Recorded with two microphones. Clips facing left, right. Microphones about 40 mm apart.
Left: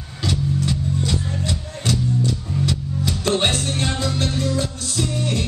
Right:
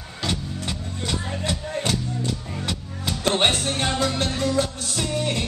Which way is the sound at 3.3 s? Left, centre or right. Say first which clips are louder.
Even; right.